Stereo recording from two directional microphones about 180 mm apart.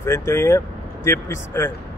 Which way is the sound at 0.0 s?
15° left (ahead or behind).